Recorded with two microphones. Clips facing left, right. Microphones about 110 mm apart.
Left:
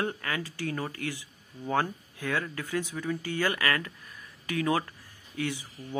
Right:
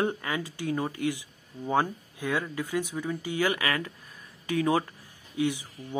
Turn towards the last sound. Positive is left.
turn(degrees=-15)  # may be behind; listen again after turning